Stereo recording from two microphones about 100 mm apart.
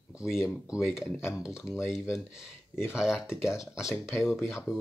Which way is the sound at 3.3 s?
30° left (ahead or behind).